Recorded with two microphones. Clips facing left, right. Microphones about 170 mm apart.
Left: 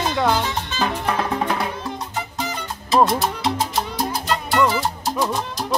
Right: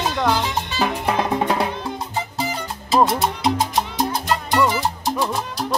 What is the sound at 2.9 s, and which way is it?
Salsa music, centre (ahead or behind).